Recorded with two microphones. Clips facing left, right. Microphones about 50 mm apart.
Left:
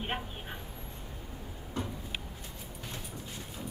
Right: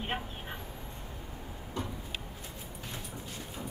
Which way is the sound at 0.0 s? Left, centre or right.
Centre.